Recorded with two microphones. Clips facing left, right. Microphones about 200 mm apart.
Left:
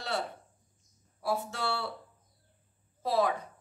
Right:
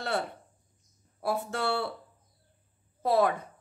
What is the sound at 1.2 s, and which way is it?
Speech, 55° right (ahead or behind).